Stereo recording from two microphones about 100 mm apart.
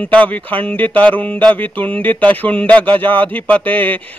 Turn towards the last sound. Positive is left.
turn(degrees=15)  # may be behind; listen again after turning